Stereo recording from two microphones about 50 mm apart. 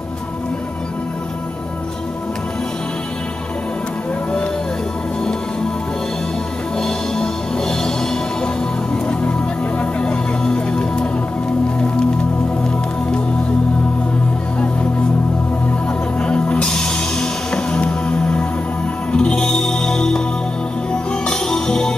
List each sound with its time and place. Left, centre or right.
6.8 s music: centre
9.2 s music: left
16.2 s music: left